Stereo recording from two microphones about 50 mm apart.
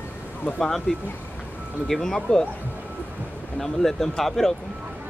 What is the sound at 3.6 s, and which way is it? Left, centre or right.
Speech, centre.